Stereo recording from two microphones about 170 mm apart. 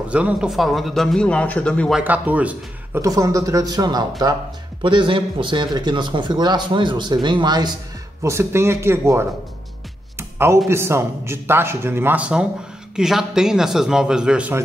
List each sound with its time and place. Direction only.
0.1 s a man's voice: 5° right (ahead or behind)
10.1 s music: 15° right (ahead or behind)
10.7 s a man's voice: 15° right (ahead or behind)